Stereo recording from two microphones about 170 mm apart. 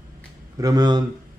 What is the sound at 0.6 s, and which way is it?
Speech, 25° right (ahead or behind).